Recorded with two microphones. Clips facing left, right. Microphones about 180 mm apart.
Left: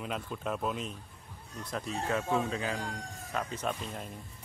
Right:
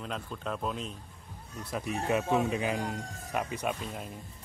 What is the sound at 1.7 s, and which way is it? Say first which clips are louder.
Speech: right 3 dB; 10° right (ahead or behind).